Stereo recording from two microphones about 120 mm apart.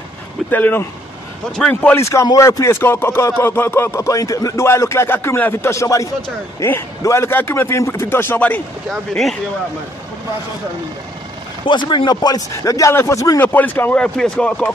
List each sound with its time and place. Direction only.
0.5 s speech: 15° left (ahead or behind)
2.0 s speech: 25° left (ahead or behind); by 9.4 s 5° left (ahead or behind)
11.6 s speech: 40° left (ahead or behind); by 13.4 s 25° left (ahead or behind)
13.4 s speech: 15° left (ahead or behind)